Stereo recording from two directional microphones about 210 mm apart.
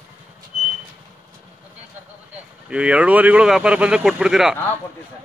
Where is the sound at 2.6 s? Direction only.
5° right (ahead or behind).